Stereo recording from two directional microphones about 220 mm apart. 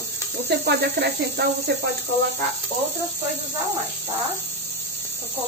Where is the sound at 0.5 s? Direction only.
50° right (ahead or behind).